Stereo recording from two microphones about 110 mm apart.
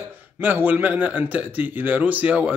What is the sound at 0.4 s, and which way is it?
A man's voice, 15° right (ahead or behind).